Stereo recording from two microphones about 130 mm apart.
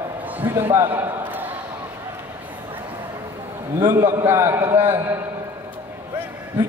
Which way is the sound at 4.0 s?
20° right (ahead or behind).